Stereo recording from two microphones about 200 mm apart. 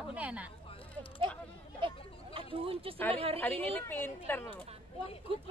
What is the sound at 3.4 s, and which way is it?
Speech, 10° left (ahead or behind).